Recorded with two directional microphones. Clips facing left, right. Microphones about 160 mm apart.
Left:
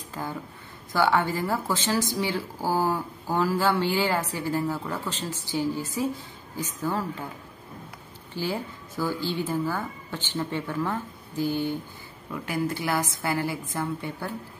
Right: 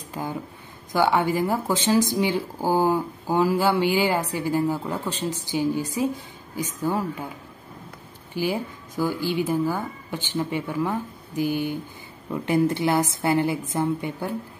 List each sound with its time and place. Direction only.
0.1 s speech: 15° right (ahead or behind)
8.4 s speech: 15° right (ahead or behind)
12.3 s a woman's voice: 25° right (ahead or behind)